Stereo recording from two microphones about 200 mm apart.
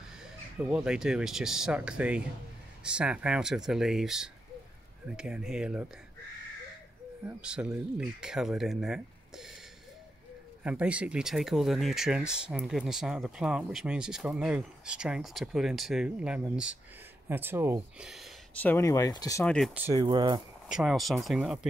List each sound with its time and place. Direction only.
0.6 s speech: 5° right (ahead or behind)
7.2 s speech: 5° right (ahead or behind)
10.6 s speech: 5° right (ahead or behind)
18.7 s speech: 15° left (ahead or behind)
19.4 s speech: 5° left (ahead or behind)
19.7 s speech: 10° right (ahead or behind)
20.0 s speech: 20° right (ahead or behind)
20.6 s speech: centre (ahead or behind)